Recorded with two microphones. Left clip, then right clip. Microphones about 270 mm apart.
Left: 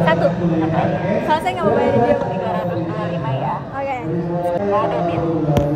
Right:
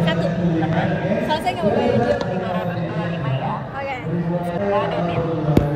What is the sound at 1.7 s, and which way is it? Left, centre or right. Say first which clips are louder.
Speech: left 3 dB; left.